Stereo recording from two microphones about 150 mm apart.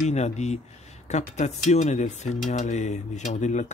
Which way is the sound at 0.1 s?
50° left (ahead or behind).